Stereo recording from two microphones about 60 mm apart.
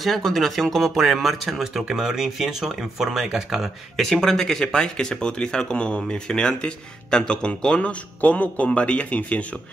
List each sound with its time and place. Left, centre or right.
0.0 s speech: centre
3.9 s speech: centre